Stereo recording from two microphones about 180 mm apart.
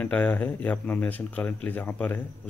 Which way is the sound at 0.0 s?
10° left (ahead or behind).